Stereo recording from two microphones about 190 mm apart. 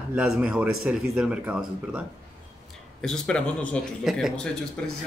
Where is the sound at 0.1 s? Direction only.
5° right (ahead or behind).